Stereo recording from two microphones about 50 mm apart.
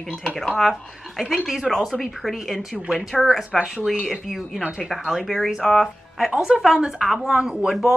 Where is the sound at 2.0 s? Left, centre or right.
Centre.